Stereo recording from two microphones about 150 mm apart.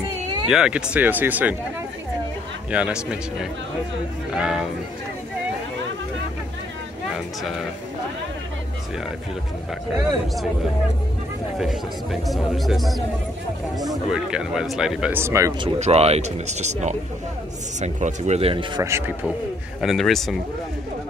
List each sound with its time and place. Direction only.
0.5 s a man's voice: 5° right (ahead or behind)
2.7 s a man's voice: 5° right (ahead or behind)
9.9 s speech: centre (ahead or behind)
14.1 s speech: 5° right (ahead or behind)
15.8 s speech: 45° right (ahead or behind)
18.8 s a man's voice: 15° right (ahead or behind)
19.8 s speech: centre (ahead or behind)